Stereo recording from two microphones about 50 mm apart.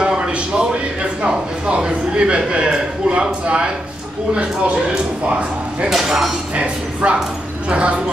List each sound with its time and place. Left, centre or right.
0.0 s a sound: centre
1.2 s a man's voice: centre
5.9 s speech: centre
6.5 s speech: right